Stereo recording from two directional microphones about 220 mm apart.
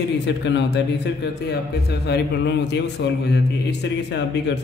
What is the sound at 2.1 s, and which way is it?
A man's voice, 50° left (ahead or behind).